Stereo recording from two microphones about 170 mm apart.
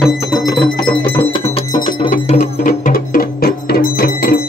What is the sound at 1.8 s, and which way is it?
Music, 45° left (ahead or behind).